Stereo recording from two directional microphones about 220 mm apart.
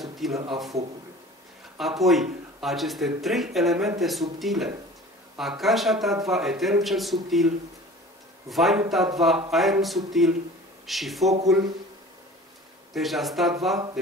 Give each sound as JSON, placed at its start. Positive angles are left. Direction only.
{"t": 0.0, "sound": "a sound", "side_deg": 0}
{"t": 1.8, "sound": "speech", "side_deg": 0}
{"t": 12.9, "sound": "speech", "side_deg": 0}